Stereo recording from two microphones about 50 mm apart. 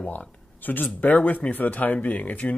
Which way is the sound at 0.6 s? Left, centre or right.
Left.